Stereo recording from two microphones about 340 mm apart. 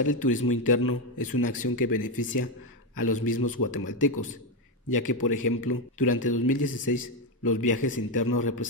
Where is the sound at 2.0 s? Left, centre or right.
Left.